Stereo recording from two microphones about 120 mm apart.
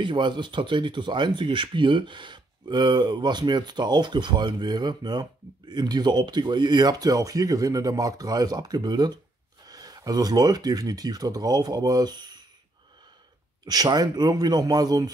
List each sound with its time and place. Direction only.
0.0 s speech: 40° right (ahead or behind)
13.7 s speech: 35° right (ahead or behind)